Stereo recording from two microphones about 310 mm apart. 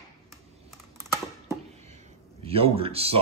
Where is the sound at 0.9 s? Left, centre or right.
Centre.